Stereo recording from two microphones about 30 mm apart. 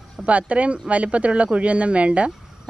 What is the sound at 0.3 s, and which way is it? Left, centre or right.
Speech, right.